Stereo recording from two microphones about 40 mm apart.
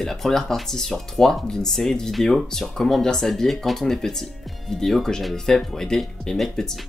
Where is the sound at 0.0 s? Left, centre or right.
Centre.